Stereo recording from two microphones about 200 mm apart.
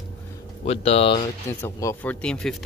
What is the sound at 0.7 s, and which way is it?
Speech, 30° left (ahead or behind).